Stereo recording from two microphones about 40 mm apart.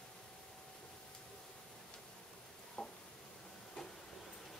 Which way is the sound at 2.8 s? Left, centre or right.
Centre.